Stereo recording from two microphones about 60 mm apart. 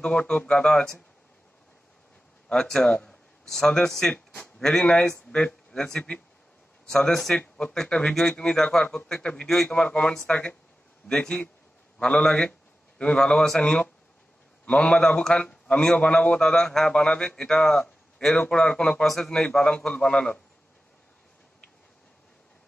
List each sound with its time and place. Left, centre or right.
0.0 s speech: centre
2.5 s speech: centre
4.1 s a man's voice: left
4.6 s a man's voice: centre